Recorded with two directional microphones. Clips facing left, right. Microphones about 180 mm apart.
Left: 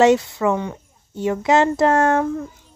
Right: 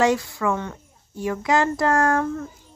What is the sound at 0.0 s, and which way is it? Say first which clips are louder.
Speech: left 6 dB; 20° left (ahead or behind).